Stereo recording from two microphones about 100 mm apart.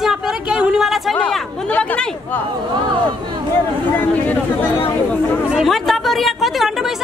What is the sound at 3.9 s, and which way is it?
Speech, 15° left (ahead or behind).